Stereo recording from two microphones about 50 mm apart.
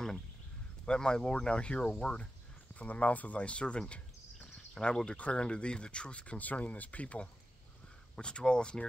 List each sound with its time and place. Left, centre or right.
0.8 s speech: centre
2.7 s speech: left